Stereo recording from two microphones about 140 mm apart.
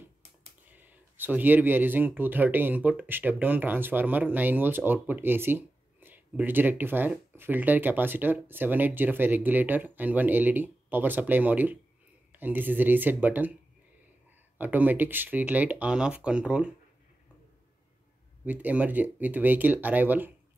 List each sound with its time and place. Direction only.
0.7 s speech: 15° right (ahead or behind)
14.6 s speech: 15° right (ahead or behind)
18.4 s speech: 10° right (ahead or behind)